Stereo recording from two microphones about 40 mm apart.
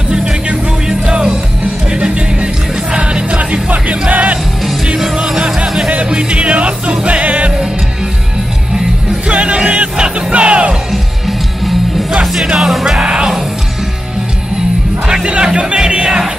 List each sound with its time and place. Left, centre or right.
0.1 s music: centre; by 4.4 s right
4.9 s music: centre; by 7.5 s right
9.3 s music: right
12.5 s music: centre
13.0 s music: right
15.2 s music: right